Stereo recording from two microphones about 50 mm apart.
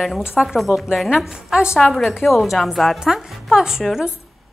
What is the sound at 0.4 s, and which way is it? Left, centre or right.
Speech, centre.